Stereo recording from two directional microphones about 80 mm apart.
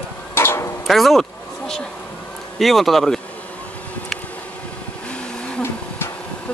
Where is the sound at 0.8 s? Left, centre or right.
Centre.